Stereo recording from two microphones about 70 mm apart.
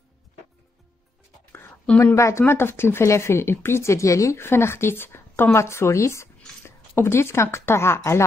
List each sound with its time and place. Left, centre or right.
2.1 s speech: left
2.4 s speech: left
6.6 s a sound: left
7.5 s speech: left